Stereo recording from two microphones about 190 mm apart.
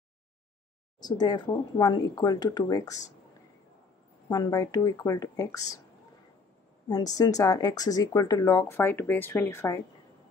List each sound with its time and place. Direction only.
1.0 s speech: 20° left (ahead or behind)
4.3 s speech: 20° left (ahead or behind)
7.2 s speech: 20° left (ahead or behind)